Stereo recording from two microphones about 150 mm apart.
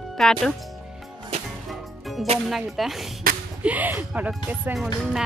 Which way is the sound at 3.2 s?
75° right (ahead or behind).